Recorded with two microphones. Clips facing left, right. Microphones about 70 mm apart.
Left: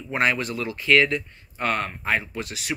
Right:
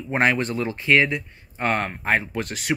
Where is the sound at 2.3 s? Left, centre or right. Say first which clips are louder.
Right 5 dB; right.